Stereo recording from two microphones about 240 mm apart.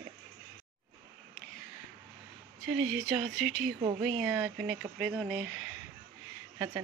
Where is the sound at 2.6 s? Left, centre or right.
Centre.